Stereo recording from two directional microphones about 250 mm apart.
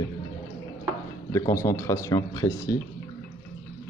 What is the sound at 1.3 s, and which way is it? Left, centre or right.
Speech, centre.